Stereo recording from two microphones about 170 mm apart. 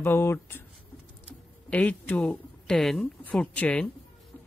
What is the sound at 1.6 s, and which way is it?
Speech, 10° left (ahead or behind).